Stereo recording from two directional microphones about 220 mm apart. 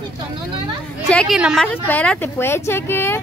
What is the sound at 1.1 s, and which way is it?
A woman's voice, centre (ahead or behind).